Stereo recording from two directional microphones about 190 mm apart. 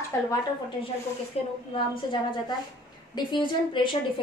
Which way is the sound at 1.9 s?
25° left (ahead or behind).